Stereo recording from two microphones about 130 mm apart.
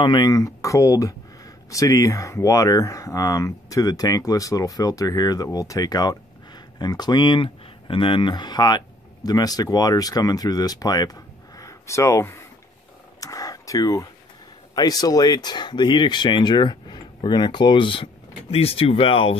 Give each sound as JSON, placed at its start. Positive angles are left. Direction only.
{"t": 0.0, "sound": "speech", "side_deg": 35}
{"t": 13.2, "sound": "a sound", "side_deg": 25}
{"t": 14.8, "sound": "speech", "side_deg": 30}